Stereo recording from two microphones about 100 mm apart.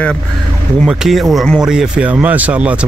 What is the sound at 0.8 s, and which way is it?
Speech, 5° right (ahead or behind).